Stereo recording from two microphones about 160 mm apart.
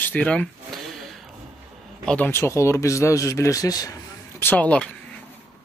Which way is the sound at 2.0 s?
10° left (ahead or behind).